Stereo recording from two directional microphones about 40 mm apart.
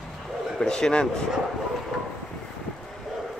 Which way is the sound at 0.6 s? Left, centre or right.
Centre.